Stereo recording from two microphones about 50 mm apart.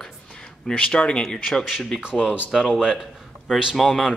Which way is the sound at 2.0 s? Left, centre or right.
Centre.